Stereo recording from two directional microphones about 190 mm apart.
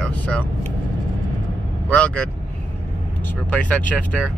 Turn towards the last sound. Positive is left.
turn(degrees=10)  # may be behind; listen again after turning